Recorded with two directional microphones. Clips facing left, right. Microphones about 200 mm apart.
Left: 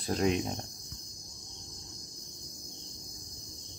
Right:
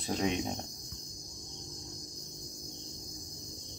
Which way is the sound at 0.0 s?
Centre (ahead or behind).